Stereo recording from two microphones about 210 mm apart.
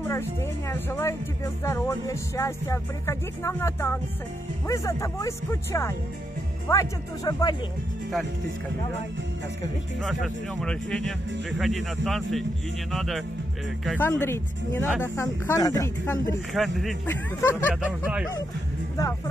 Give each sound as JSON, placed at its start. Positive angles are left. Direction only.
{"t": 0.0, "sound": "speech", "side_deg": 10}
{"t": 9.9, "sound": "speech", "side_deg": 5}
{"t": 16.5, "sound": "speech", "side_deg": 0}
{"t": 17.7, "sound": "speech", "side_deg": -5}
{"t": 19.0, "sound": "speech", "side_deg": 15}